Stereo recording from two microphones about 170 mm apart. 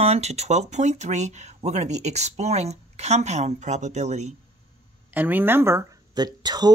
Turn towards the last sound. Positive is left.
turn(degrees=-25)  # may be behind; listen again after turning